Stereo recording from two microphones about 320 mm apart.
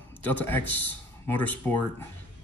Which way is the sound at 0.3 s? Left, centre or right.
Centre.